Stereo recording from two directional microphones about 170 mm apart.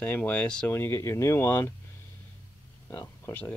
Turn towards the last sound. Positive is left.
turn(degrees=10)  # may be behind; listen again after turning